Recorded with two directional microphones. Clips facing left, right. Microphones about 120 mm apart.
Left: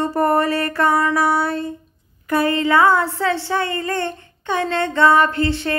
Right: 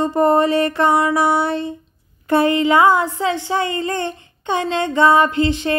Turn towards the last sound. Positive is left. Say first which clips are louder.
# right 2 dB
turn(degrees=-20)  # may be behind; listen again after turning